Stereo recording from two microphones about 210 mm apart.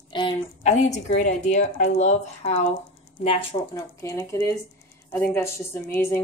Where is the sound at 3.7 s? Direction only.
15° left (ahead or behind).